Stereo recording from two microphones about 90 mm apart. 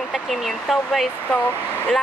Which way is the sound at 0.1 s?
Centre (ahead or behind).